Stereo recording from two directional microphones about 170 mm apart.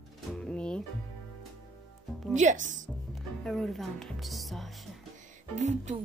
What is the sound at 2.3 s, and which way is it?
Speech, 45° right (ahead or behind).